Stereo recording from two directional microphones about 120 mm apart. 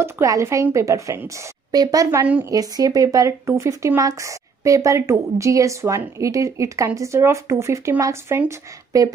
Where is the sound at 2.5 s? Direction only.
30° right (ahead or behind).